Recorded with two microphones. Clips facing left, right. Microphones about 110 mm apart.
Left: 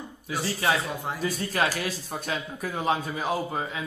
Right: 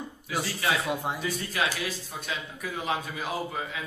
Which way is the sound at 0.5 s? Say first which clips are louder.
Left 3 dB; 35° left (ahead or behind).